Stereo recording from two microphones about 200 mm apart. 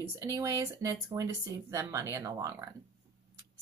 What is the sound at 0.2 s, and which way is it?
Speech, 15° right (ahead or behind).